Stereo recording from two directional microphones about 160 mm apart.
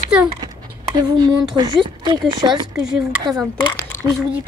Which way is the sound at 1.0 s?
25° right (ahead or behind).